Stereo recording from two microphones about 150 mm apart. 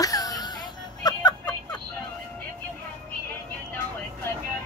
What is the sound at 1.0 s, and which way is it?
Music, 25° left (ahead or behind).